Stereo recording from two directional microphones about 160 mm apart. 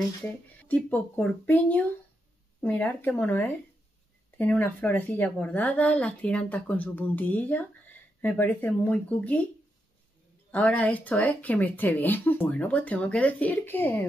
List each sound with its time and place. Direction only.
0.2 s speech: 10° left (ahead or behind)
10.5 s speech: 10° left (ahead or behind)